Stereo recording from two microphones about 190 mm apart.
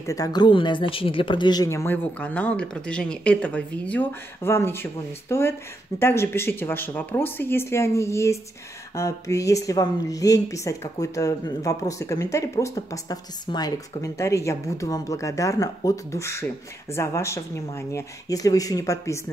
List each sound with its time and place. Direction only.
0.0 s speech: 20° left (ahead or behind)